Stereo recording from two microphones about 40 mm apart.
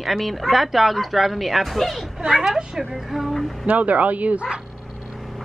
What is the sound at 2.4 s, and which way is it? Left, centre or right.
A child's voice, centre.